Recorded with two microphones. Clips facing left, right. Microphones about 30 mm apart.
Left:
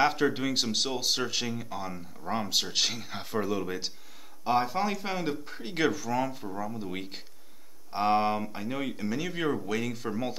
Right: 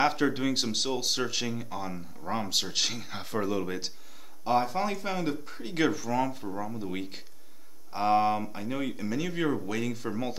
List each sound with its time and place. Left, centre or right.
0.0 s speech: centre
4.5 s speech: centre
5.8 s speech: centre